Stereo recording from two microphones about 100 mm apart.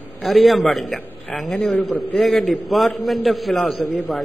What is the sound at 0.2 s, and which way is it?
A man's voice, centre (ahead or behind).